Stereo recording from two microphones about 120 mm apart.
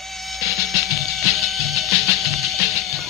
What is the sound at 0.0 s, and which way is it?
Music, centre (ahead or behind).